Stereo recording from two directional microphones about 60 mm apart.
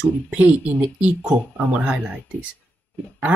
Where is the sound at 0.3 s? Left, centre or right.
Centre.